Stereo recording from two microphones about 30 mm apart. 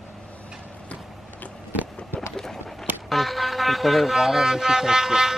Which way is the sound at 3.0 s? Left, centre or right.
Centre.